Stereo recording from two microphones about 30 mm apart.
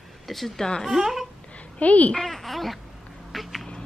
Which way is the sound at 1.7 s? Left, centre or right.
Left.